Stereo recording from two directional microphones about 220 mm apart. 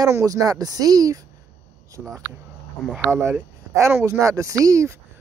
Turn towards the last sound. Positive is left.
turn(degrees=-15)  # may be behind; listen again after turning